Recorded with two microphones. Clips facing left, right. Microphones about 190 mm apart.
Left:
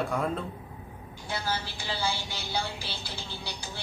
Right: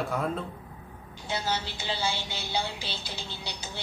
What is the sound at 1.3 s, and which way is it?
A woman's voice, 20° right (ahead or behind).